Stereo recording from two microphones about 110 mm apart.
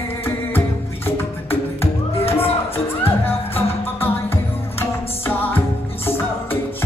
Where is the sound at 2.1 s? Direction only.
65° left (ahead or behind).